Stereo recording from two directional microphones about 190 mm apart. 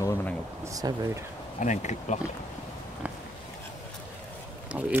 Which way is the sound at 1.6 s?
40° left (ahead or behind).